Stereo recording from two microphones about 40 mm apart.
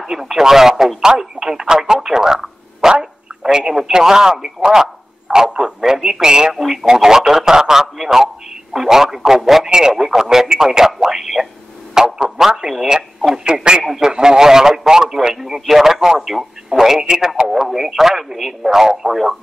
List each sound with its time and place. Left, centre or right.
0.0 s speech: centre
5.9 s speech: centre
6.2 s speech: centre
6.5 s speech: centre
9.7 s speech: centre
13.8 s speech: centre